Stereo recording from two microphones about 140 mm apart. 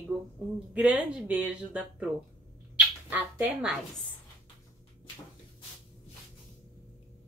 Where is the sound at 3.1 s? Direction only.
10° right (ahead or behind).